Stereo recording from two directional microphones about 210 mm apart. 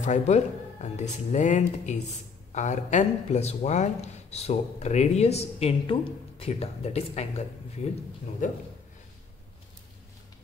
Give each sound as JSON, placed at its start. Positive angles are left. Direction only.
{"t": 0.0, "sound": "speech", "side_deg": 35}